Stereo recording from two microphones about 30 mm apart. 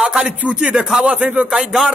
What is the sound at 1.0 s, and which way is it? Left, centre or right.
Speech, right.